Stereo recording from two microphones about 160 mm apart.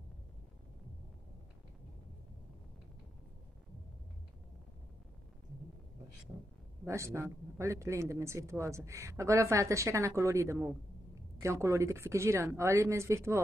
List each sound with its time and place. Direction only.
6.9 s speech: 15° right (ahead or behind)